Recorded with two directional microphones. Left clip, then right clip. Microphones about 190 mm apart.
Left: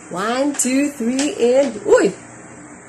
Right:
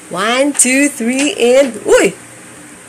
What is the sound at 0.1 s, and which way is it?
Speech, 10° right (ahead or behind).